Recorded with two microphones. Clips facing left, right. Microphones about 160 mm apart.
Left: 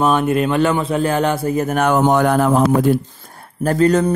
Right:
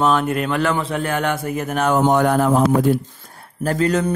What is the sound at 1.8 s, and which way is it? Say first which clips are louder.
Speech: left 1 dB; 65° left (ahead or behind).